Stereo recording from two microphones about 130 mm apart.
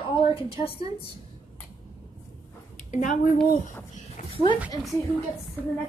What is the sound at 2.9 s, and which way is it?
Speech, 80° left.